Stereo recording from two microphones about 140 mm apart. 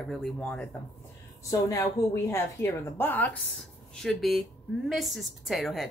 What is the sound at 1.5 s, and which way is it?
A woman's voice, 25° left (ahead or behind).